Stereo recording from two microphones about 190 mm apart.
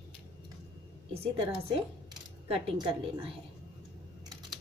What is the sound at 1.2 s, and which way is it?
A woman's voice, 25° right (ahead or behind).